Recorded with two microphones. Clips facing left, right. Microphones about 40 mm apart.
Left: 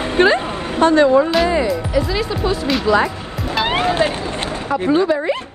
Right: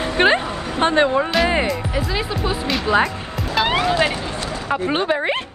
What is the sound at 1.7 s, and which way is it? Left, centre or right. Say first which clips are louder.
Speech: left 4 dB; centre.